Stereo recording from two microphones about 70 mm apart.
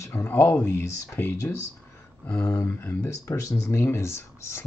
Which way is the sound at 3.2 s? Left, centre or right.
Left.